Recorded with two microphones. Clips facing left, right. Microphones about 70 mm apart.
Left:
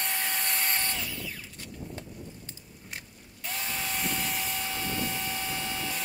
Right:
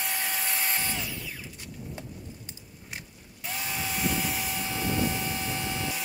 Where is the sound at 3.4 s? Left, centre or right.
Centre.